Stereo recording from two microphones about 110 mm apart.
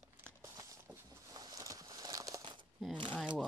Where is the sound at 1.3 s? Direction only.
35° right (ahead or behind).